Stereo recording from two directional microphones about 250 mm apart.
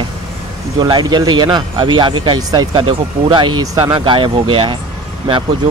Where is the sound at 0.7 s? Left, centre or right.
Centre.